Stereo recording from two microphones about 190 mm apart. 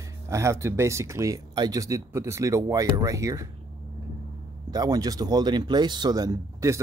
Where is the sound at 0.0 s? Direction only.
15° right (ahead or behind).